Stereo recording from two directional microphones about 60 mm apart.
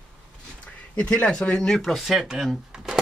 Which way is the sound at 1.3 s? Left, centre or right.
Centre.